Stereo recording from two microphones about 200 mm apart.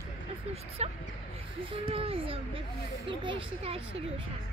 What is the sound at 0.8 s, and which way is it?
A child's voice, 35° right (ahead or behind).